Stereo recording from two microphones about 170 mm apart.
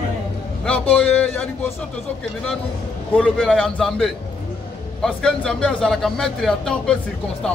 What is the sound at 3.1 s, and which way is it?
A man's voice, 5° left (ahead or behind).